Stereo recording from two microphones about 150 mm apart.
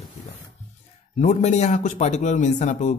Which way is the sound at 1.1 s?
50° left (ahead or behind).